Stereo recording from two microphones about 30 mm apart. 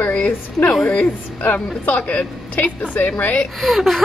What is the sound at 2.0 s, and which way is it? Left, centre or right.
A woman's voice, left.